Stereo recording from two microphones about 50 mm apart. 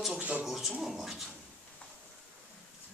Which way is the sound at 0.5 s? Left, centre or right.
Centre.